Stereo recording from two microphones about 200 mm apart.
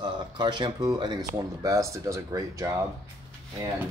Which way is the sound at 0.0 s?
20° right (ahead or behind).